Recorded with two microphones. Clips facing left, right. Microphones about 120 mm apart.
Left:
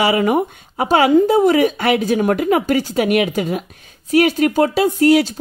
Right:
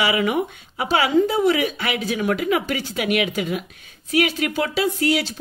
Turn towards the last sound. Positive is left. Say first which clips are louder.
# left 8 dB
turn(degrees=45)  # may be behind; listen again after turning